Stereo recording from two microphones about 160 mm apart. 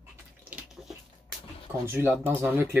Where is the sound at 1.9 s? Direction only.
15° right (ahead or behind).